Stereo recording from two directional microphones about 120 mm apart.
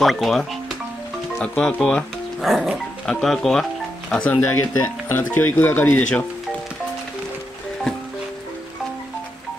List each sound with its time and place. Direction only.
0.0 s speech: centre (ahead or behind)